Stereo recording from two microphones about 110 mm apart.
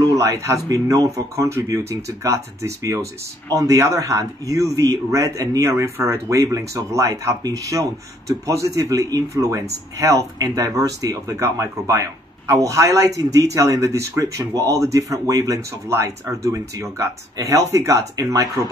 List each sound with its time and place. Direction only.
0.1 s speech: 30° right (ahead or behind)